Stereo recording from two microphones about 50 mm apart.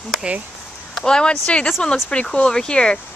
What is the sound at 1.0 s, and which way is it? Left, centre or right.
Speech, centre.